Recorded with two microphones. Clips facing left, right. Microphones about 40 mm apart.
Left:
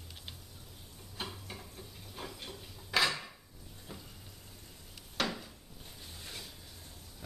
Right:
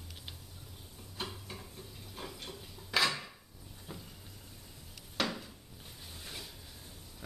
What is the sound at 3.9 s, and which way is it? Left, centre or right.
Vehicle, centre.